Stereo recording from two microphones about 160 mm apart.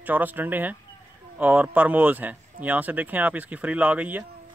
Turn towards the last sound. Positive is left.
turn(degrees=-10)  # may be behind; listen again after turning